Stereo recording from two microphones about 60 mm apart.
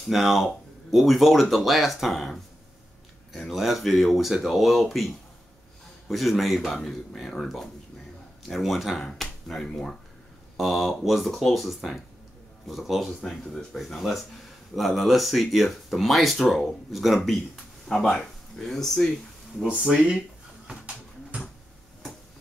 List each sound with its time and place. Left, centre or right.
0.0 s speech: centre
10.6 s speech: centre
19.9 s speech: centre
20.6 s a sound: right